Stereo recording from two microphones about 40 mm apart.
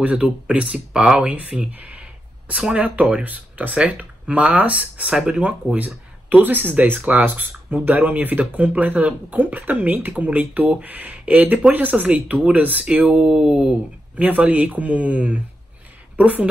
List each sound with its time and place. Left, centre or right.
0.0 s speech: right
1.7 s a sound: right
2.8 s speech: right
3.7 s speech: right
5.1 s speech: centre
5.4 s speech: right
7.1 s speech: right; by 13.7 s centre
14.1 s speech: right